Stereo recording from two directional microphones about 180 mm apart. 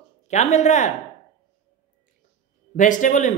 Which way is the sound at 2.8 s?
45° left (ahead or behind).